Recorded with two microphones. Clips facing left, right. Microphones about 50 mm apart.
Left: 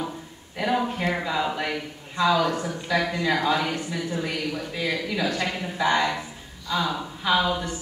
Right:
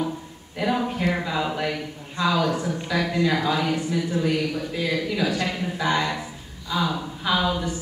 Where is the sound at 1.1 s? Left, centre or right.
Centre.